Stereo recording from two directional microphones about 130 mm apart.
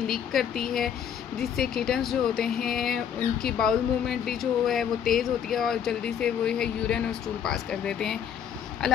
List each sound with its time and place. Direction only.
0.0 s speech: centre (ahead or behind)